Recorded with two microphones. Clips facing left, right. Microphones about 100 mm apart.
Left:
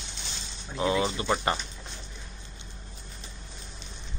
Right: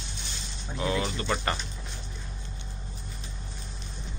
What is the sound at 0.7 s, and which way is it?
Speech, 20° left (ahead or behind).